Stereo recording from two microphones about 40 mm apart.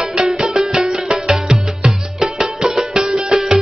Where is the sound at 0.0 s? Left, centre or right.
Centre.